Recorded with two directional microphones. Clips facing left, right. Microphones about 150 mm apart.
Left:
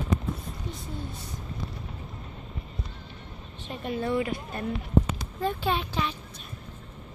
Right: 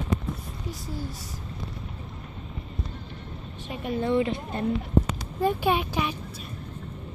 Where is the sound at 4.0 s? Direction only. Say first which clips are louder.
Right 4 dB; 25° right (ahead or behind).